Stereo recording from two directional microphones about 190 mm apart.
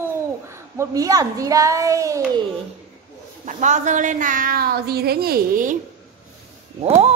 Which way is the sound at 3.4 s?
40° right (ahead or behind).